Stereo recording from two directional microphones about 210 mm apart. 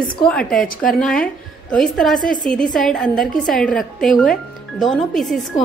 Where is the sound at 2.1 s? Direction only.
40° left (ahead or behind).